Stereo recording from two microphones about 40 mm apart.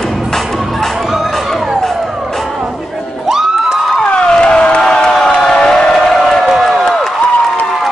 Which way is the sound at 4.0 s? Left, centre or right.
Left.